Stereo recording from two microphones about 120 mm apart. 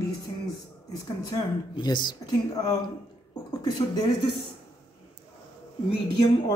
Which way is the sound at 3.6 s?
35° left (ahead or behind).